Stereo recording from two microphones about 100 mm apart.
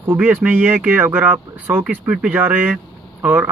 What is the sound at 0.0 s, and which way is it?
Speech, 20° right (ahead or behind).